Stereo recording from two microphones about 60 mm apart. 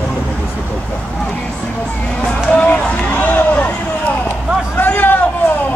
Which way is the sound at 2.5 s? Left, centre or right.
Left.